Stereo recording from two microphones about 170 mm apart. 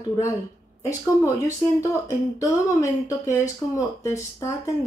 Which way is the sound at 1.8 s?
20° left (ahead or behind).